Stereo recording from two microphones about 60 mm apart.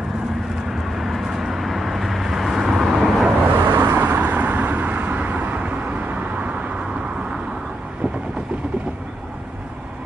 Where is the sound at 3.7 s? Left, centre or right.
Right; by 8.4 s centre.